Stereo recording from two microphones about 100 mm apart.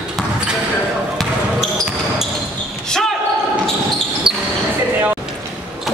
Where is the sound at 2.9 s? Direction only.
5° left (ahead or behind).